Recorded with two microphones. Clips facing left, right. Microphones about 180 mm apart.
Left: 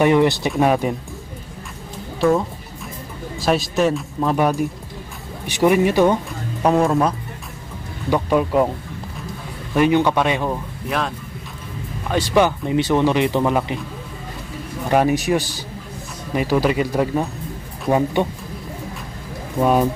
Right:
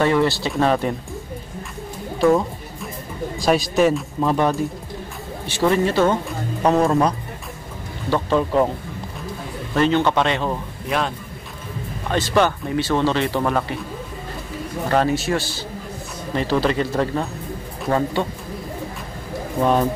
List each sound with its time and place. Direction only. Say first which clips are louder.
0.0 s speech: left 3 dB; 20° left (ahead or behind)
2.1 s speech: right 1 dB; centre (ahead or behind)
5.5 s speech: left 3 dB; 15° left (ahead or behind)
6.6 s speech: even; 5° left (ahead or behind)
9.8 s speech: left 2 dB; 15° left (ahead or behind)
10.9 s speech: right 1 dB; centre (ahead or behind)
12.1 s speech: left 2 dB; 10° left (ahead or behind)
14.9 s speech: left 3 dB; 15° left (ahead or behind)
19.6 s speech: left 2 dB; 10° left (ahead or behind)